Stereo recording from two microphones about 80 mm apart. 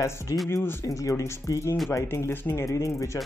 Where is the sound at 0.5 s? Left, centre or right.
Left.